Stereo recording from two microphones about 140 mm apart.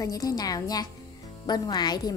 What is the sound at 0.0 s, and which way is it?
A woman's voice, 25° left (ahead or behind).